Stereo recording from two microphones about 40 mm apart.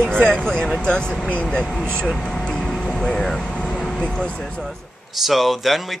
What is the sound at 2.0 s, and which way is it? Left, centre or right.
Vehicle, centre.